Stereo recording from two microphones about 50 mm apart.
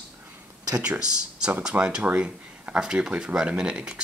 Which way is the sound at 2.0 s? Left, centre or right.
Right.